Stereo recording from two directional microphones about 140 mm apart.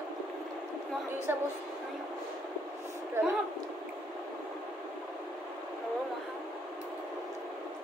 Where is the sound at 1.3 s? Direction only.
15° right (ahead or behind).